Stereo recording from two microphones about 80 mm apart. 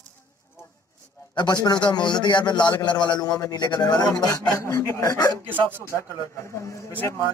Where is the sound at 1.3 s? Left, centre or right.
Left.